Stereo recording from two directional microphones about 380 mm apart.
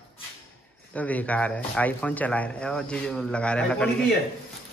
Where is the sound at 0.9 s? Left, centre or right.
Centre.